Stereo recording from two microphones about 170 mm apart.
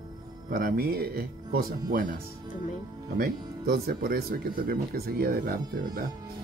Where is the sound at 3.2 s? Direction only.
60° right (ahead or behind).